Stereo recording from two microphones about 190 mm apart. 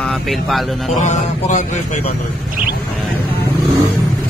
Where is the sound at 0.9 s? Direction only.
40° left (ahead or behind).